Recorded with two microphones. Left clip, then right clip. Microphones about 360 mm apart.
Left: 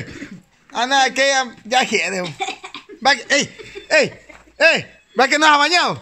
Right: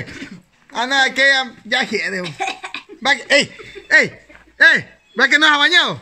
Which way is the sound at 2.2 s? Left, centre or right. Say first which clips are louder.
Right 2 dB; right.